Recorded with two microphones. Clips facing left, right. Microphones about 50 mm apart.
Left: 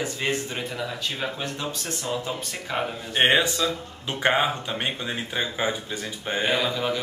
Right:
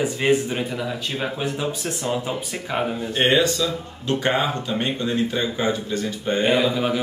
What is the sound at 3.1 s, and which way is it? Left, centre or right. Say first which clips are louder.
Speech: right 1 dB; centre.